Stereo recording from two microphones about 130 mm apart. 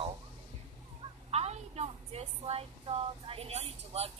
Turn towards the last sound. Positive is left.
turn(degrees=-50)  # may be behind; listen again after turning